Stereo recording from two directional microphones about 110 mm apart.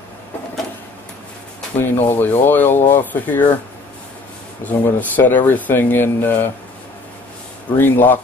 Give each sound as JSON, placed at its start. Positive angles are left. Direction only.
{"t": 1.8, "sound": "speech", "side_deg": 20}
{"t": 4.6, "sound": "speech", "side_deg": 15}
{"t": 7.7, "sound": "speech", "side_deg": 15}